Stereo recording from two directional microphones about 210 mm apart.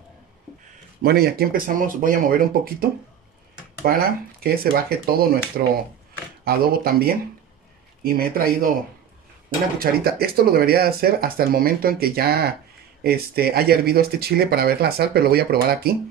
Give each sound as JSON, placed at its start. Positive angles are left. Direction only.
{"t": 1.0, "sound": "speech", "side_deg": -45}
{"t": 9.8, "sound": "speech", "side_deg": -45}